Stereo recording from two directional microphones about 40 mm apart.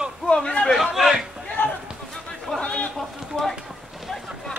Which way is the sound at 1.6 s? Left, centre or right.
Left.